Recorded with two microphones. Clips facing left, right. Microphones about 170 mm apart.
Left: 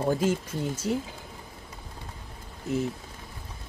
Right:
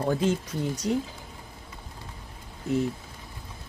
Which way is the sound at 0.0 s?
10° left (ahead or behind).